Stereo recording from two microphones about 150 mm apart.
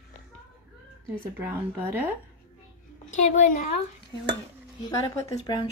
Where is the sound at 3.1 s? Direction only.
55° left (ahead or behind).